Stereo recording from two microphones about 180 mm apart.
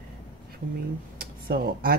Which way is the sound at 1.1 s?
55° right (ahead or behind).